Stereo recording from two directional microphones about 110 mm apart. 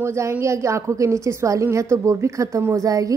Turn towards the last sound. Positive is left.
turn(degrees=-30)  # may be behind; listen again after turning